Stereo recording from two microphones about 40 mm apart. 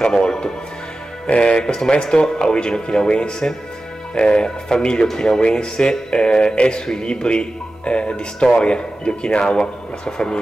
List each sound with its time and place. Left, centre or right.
0.0 s speech: centre